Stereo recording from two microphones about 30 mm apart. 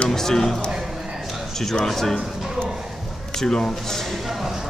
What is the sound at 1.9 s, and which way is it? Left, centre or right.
Speech, centre.